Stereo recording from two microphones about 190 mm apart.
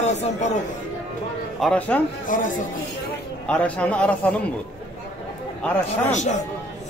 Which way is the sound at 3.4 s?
5° left (ahead or behind).